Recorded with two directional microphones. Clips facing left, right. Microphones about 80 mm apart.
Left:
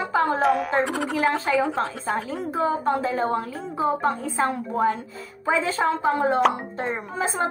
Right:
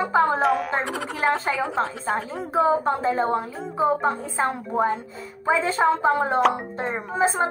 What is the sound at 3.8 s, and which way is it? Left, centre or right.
Speech, centre.